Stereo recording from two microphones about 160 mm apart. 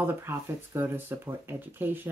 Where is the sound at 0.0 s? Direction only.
15° right (ahead or behind).